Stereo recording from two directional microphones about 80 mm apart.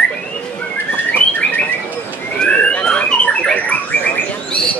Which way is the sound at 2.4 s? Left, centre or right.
Centre.